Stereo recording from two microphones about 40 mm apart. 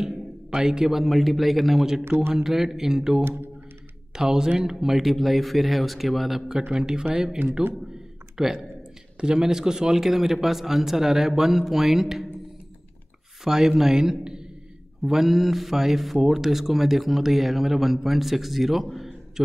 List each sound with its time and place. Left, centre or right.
0.0 s a sound: centre
1.0 s speech: centre
2.0 s a man's voice: right
2.4 s speech: centre
6.7 s speech: centre
7.4 s a man's voice: right
8.4 s speech: centre
13.4 s speech: centre
15.0 s speech: centre
18.9 s a sound: centre